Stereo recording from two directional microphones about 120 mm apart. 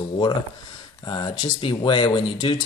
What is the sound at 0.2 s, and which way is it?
Speech, 40° left (ahead or behind).